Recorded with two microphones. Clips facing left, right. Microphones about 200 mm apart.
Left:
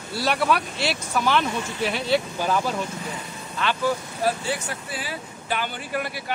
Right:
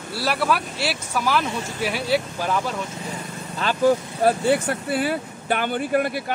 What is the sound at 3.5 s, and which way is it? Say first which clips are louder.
Speech: right 5 dB; 45° right (ahead or behind).